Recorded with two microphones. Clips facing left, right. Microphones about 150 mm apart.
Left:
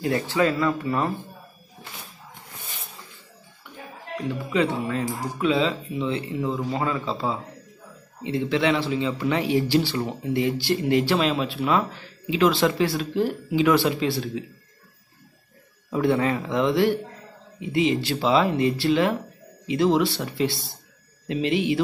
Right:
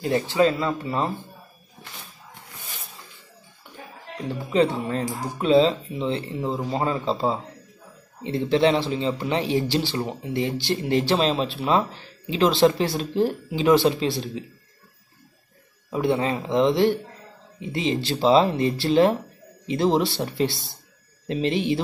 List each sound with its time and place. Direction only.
0.0 s speech: 25° right (ahead or behind)
4.5 s speech: 35° right (ahead or behind)
15.9 s speech: 20° right (ahead or behind)